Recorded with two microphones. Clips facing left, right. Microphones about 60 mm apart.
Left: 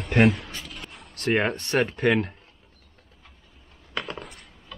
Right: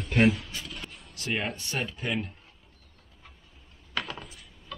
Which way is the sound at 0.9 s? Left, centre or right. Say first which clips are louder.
Left 9 dB; left.